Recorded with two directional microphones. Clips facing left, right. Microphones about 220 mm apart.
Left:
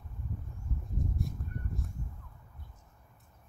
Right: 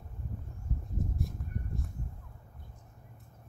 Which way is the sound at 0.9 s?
Centre (ahead or behind).